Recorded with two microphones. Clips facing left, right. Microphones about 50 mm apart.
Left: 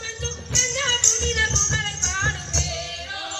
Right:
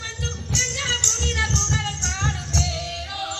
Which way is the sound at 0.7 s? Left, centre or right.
Left.